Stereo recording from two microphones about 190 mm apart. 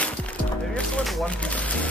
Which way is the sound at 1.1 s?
5° left (ahead or behind).